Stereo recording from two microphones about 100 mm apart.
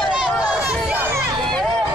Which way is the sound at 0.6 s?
15° right (ahead or behind).